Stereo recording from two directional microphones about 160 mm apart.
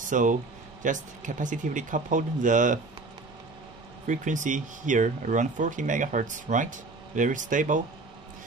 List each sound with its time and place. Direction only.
0.1 s speech: 55° right (ahead or behind)
4.1 s speech: 50° right (ahead or behind)